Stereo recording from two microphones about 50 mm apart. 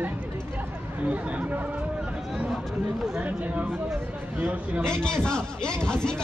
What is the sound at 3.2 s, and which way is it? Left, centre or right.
Speech, right.